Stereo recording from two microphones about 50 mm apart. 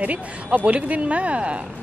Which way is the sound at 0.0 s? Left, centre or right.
Right.